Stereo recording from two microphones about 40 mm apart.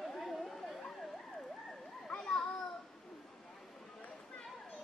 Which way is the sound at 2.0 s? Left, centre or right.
Centre.